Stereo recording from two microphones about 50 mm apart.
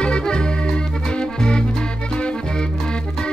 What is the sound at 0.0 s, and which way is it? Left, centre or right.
Music, centre.